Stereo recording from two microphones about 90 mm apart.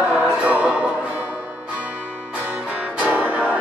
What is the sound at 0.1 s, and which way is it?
Music, 15° right (ahead or behind).